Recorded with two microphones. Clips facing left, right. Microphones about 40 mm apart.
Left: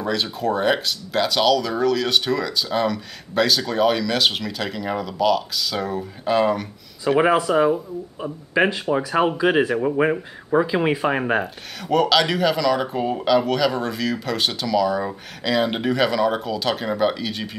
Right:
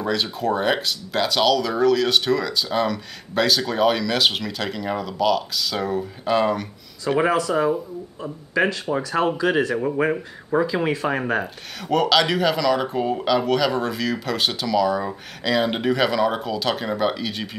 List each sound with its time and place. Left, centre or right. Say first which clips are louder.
0.0 s speech: even; centre
7.2 s speech: left 3 dB; left
10.7 s speech: left 2 dB; centre
11.4 s speech: left 1 dB; centre